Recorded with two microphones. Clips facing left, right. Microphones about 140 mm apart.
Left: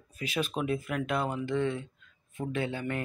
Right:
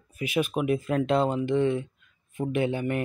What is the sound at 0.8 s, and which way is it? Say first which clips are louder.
Speech: right 7 dB; 30° right (ahead or behind).